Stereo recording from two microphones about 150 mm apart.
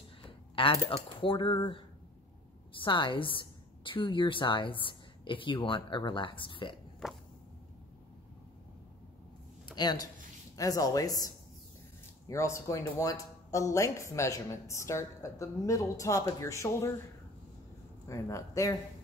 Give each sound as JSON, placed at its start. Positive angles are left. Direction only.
{"t": 0.2, "sound": "speech", "side_deg": 35}
{"t": 2.8, "sound": "a woman's voice", "side_deg": 35}
{"t": 7.0, "sound": "a sound", "side_deg": 0}
{"t": 9.7, "sound": "speech", "side_deg": 30}
{"t": 18.0, "sound": "speech", "side_deg": 20}